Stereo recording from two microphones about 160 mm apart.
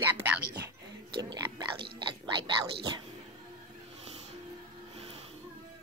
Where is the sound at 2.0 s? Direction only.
30° right (ahead or behind).